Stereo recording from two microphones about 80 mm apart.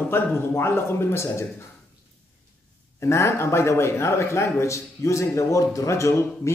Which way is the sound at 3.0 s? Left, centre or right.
Left.